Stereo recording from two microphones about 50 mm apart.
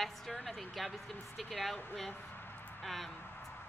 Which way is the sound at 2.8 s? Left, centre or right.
Centre.